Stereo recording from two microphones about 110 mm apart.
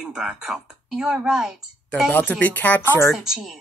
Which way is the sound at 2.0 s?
15° left (ahead or behind).